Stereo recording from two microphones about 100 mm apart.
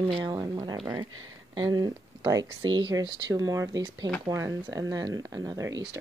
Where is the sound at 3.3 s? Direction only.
35° right (ahead or behind).